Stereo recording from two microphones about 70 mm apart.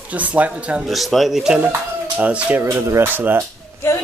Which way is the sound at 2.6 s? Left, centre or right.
Right.